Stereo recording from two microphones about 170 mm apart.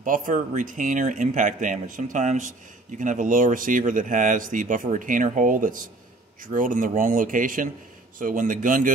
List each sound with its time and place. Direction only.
0.0 s speech: 50° right (ahead or behind)